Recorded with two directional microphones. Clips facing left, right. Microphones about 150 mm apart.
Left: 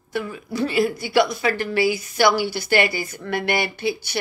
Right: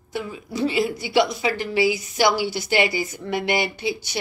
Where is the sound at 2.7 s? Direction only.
55° left (ahead or behind).